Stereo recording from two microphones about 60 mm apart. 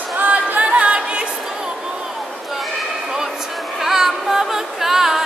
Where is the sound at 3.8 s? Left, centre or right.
Centre.